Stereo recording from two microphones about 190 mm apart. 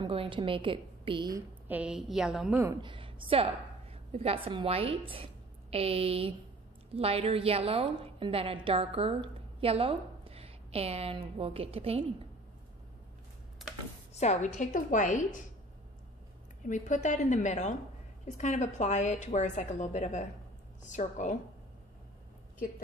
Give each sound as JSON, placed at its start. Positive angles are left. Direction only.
{"t": 0.0, "sound": "a woman's voice", "side_deg": -30}
{"t": 1.7, "sound": "a woman's voice", "side_deg": -5}
{"t": 2.8, "sound": "a woman's voice", "side_deg": -25}
{"t": 14.1, "sound": "a woman's voice", "side_deg": 35}
{"t": 16.6, "sound": "a woman's voice", "side_deg": 40}